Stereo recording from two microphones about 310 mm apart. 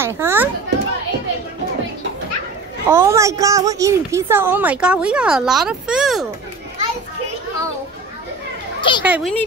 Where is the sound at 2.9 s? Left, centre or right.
Centre.